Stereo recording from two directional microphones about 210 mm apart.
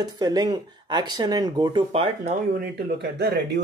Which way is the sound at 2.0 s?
40° right (ahead or behind).